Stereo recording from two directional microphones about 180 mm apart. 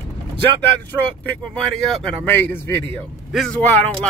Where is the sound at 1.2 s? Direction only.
5° left (ahead or behind).